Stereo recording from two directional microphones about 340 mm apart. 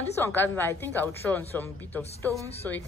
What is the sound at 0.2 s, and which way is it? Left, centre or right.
A woman's voice, centre.